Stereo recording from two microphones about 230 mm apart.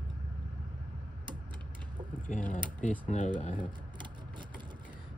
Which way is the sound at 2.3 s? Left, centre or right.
Left.